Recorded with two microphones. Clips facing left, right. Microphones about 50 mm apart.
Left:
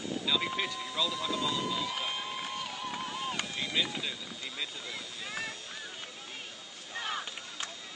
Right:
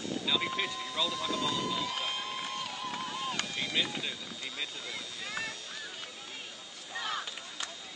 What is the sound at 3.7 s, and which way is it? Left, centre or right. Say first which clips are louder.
Speech: left 1 dB; centre.